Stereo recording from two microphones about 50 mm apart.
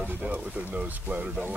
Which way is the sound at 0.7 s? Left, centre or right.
Right.